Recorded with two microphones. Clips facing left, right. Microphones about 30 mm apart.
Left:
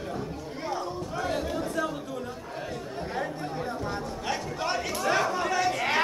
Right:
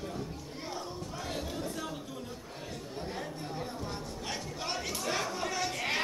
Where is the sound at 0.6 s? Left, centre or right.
Centre.